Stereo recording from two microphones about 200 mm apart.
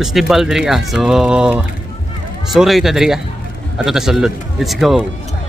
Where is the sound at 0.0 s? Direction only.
Centre (ahead or behind).